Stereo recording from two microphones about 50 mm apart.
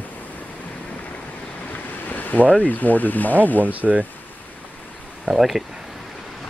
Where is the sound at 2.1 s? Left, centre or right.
Left.